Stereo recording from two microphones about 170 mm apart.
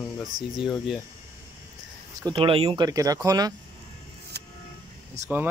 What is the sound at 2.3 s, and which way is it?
Speech, 35° right (ahead or behind).